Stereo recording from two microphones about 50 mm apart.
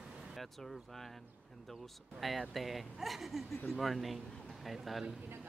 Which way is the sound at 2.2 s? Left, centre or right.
Centre.